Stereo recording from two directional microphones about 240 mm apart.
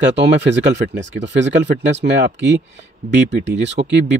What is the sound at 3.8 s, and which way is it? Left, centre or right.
Speech, right.